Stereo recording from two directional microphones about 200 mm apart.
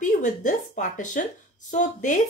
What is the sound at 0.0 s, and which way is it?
Speech, 40° left (ahead or behind).